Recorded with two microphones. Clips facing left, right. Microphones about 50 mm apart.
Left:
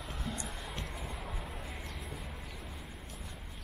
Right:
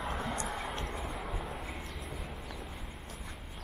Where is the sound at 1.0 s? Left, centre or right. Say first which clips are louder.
Right 4 dB; centre.